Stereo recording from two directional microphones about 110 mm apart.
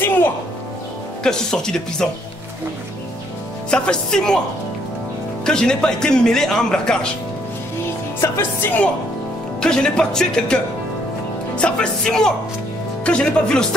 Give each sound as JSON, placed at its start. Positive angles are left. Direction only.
{"t": 0.0, "sound": "music", "side_deg": 20}
{"t": 1.2, "sound": "speech", "side_deg": 5}
{"t": 3.7, "sound": "speech", "side_deg": 10}
{"t": 5.4, "sound": "speech", "side_deg": 5}
{"t": 8.2, "sound": "speech", "side_deg": 20}